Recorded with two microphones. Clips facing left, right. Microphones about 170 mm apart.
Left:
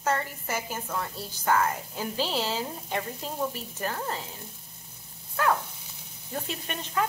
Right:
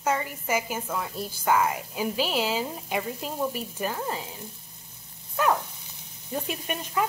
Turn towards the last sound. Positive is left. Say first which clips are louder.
# right 2 dB
turn(degrees=-15)  # may be behind; listen again after turning